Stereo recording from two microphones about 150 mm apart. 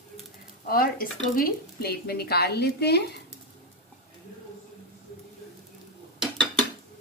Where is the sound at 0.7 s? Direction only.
75° left (ahead or behind); by 3.0 s 90° left.